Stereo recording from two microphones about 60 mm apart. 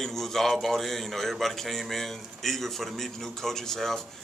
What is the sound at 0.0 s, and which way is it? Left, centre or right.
A man's voice, centre.